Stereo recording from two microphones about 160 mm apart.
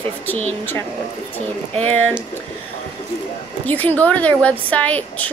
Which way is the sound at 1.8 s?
10° left (ahead or behind).